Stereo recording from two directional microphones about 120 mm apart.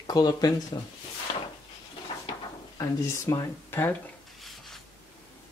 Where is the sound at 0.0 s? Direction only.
35° left (ahead or behind).